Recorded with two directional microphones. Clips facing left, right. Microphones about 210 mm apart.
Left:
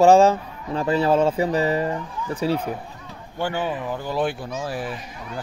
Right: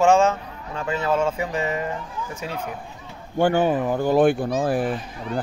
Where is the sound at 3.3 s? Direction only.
50° right (ahead or behind).